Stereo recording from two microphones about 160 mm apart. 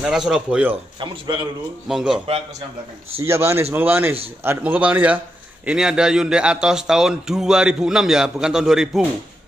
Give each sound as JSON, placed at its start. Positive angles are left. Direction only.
{"t": 0.0, "sound": "a man's voice", "side_deg": -5}
{"t": 0.9, "sound": "a man's voice", "side_deg": -30}
{"t": 1.9, "sound": "a man's voice", "side_deg": -5}
{"t": 3.2, "sound": "a man's voice", "side_deg": -15}